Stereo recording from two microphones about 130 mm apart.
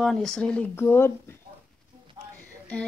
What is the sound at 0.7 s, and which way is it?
Speech, 20° left (ahead or behind).